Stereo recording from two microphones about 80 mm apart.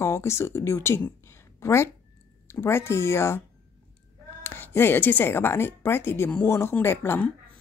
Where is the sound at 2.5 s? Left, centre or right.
Left.